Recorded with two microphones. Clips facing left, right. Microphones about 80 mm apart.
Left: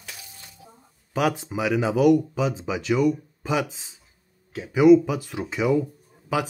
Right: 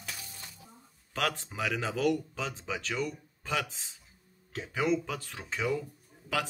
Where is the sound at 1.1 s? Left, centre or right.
Centre.